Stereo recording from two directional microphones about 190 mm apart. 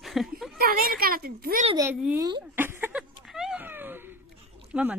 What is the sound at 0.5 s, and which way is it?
A woman's voice, 50° right (ahead or behind).